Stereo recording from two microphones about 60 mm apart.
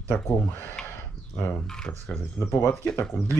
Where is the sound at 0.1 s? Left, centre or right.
Centre.